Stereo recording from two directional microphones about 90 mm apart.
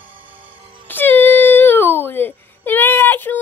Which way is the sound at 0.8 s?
20° left (ahead or behind).